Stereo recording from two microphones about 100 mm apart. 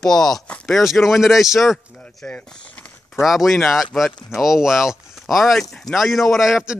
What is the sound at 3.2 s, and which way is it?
Speech, centre (ahead or behind).